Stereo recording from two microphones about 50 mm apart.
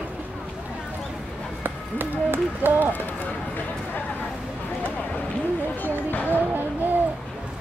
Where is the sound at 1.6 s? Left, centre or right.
Right.